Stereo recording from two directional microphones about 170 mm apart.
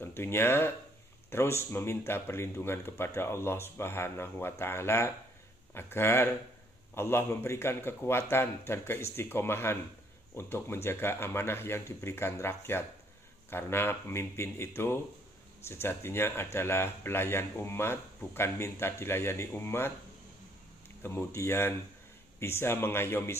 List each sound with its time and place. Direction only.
0.0 s speech: 15° left (ahead or behind)
21.0 s speech: 15° left (ahead or behind)